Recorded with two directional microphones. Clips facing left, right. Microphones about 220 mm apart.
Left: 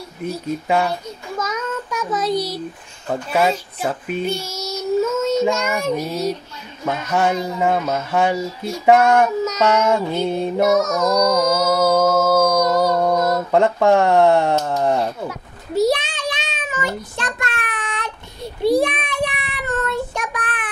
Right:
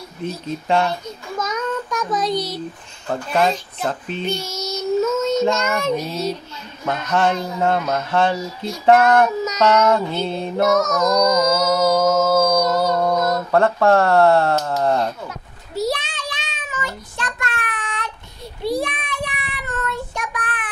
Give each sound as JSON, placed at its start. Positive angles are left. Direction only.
{"t": 0.2, "sound": "speech", "side_deg": 10}
{"t": 1.4, "sound": "child singing", "side_deg": 5}
{"t": 3.1, "sound": "speech", "side_deg": 10}
{"t": 8.9, "sound": "child singing", "side_deg": 0}